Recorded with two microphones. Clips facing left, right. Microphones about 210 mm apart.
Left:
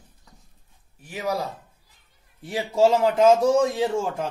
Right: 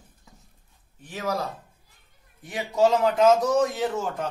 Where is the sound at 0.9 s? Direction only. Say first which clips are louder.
Left 1 dB; 10° left (ahead or behind).